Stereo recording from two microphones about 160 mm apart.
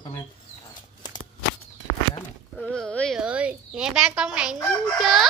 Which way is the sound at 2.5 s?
5° left (ahead or behind).